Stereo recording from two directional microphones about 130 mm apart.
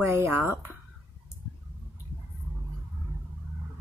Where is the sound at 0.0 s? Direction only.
20° right (ahead or behind).